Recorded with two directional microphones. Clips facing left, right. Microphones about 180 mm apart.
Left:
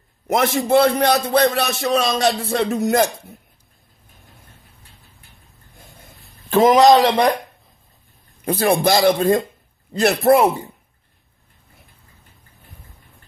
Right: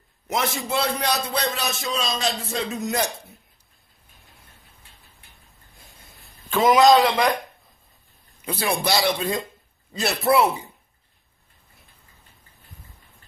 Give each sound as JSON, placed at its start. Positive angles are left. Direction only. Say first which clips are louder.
{"t": 0.7, "sound": "speech", "louder": "left 13 dB", "side_deg": 55}
{"t": 4.2, "sound": "vehicle", "louder": "left 5 dB", "side_deg": 0}
{"t": 5.7, "sound": "a sound", "louder": "left 7 dB", "side_deg": 0}
{"t": 6.5, "sound": "speech", "louder": "left 4 dB", "side_deg": 45}
{"t": 8.5, "sound": "speech", "louder": "left 8 dB", "side_deg": 50}